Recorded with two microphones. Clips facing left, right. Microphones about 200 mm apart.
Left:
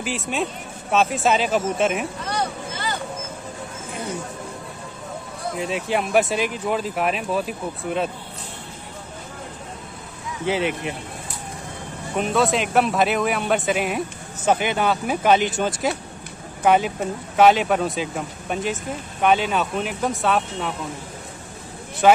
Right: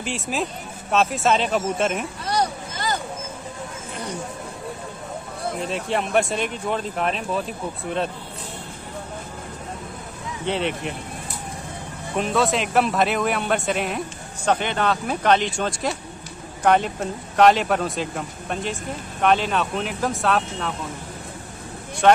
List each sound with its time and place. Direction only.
0.0 s speech: centre (ahead or behind)
2.2 s a sound: 40° right (ahead or behind)
5.6 s speech: centre (ahead or behind)
10.4 s speech: 5° left (ahead or behind)
12.2 s speech: centre (ahead or behind)
22.0 s speech: 5° left (ahead or behind)